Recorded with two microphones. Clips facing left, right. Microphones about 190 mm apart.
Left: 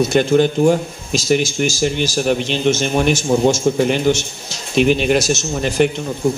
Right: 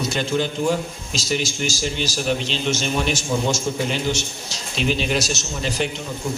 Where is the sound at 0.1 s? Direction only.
55° left (ahead or behind).